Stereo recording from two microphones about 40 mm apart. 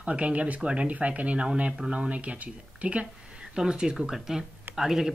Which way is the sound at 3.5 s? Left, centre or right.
Centre.